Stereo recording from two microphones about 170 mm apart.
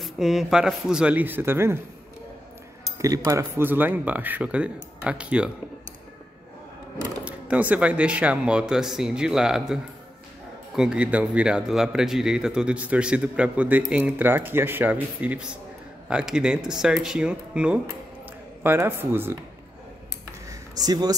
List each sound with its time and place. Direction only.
0.0 s speech: centre (ahead or behind)
3.0 s speech: 20° right (ahead or behind)
7.2 s speech: 10° right (ahead or behind)
10.8 s speech: 5° right (ahead or behind)
20.4 s a sound: 20° right (ahead or behind)